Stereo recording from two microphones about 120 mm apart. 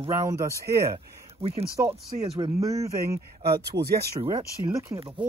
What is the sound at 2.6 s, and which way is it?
Speech, 25° right (ahead or behind).